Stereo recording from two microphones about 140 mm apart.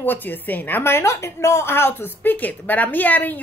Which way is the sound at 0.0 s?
15° left (ahead or behind).